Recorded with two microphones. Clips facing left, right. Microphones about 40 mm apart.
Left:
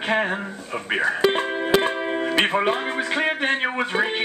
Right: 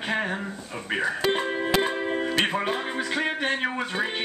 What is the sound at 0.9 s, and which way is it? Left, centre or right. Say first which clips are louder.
Speech: left 4 dB; centre.